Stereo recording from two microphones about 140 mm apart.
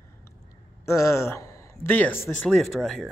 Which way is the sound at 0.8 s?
20° left (ahead or behind).